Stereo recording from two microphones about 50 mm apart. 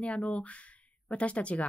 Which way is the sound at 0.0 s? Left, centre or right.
Left.